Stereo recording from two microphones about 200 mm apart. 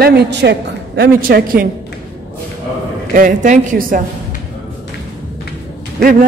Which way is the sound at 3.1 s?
40° right (ahead or behind).